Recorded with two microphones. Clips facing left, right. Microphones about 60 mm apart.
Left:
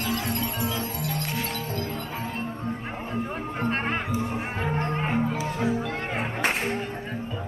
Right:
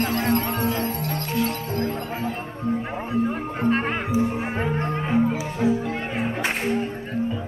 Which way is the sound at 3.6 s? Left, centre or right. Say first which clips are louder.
Right 5 dB; centre.